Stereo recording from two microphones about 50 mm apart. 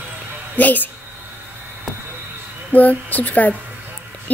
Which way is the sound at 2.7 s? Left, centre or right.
Left.